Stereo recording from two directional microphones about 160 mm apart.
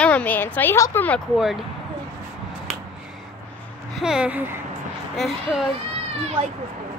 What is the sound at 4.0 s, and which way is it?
Speech, 5° right (ahead or behind).